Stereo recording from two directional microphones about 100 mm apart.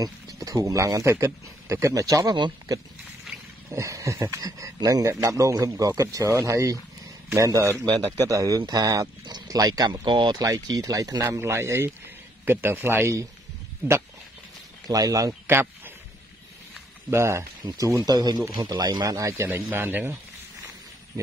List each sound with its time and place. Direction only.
0.0 s speech: 35° right (ahead or behind)
3.3 s wild animals: 5° right (ahead or behind)
3.7 s speech: 30° right (ahead or behind); by 10.4 s 50° right (ahead or behind)
10.4 s speech: 35° right (ahead or behind); by 14.0 s 20° right (ahead or behind)
14.9 s speech: 35° right (ahead or behind)
15.4 s a sound: 20° right (ahead or behind)
17.1 s speech: 25° right (ahead or behind)